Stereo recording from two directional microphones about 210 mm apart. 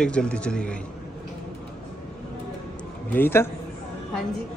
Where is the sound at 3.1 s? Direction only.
10° left (ahead or behind).